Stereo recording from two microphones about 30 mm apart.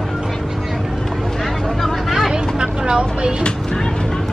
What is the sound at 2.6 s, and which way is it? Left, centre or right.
Vehicle, right.